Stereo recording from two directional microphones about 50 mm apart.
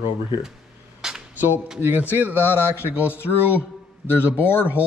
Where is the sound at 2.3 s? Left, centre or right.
Left.